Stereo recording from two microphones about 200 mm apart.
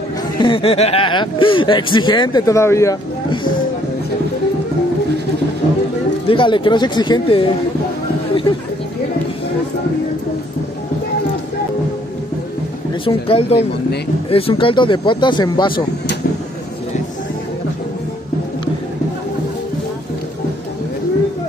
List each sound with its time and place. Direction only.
0.4 s speech: 25° left (ahead or behind)
6.2 s speech: 25° left (ahead or behind)
13.0 s speech: 30° left (ahead or behind)